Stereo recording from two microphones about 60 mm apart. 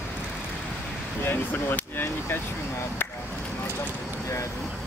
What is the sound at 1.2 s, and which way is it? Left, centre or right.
Speech, left.